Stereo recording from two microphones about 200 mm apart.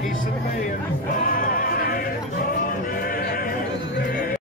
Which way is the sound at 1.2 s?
45° left (ahead or behind).